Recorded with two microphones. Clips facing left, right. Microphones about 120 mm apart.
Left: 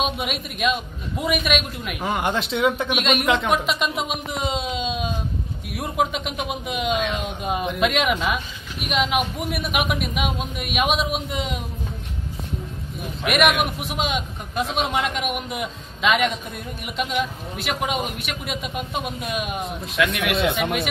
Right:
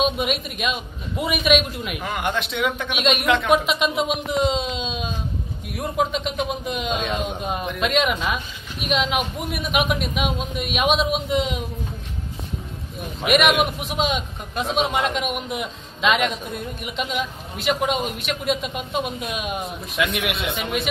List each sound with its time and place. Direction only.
0.0 s speech: centre (ahead or behind)
2.0 s speech: 25° left (ahead or behind)
2.9 s speech: centre (ahead or behind)
13.3 s speech: centre (ahead or behind)